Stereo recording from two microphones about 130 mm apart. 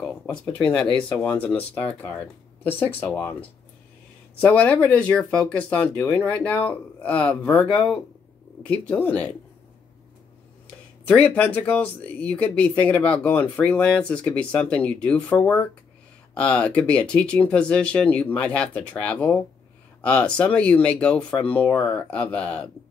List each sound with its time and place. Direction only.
1.2 s speech: 10° left (ahead or behind)
11.1 s speech: 10° left (ahead or behind)